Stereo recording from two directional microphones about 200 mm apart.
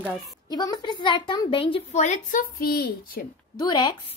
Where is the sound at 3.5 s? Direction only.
20° left (ahead or behind).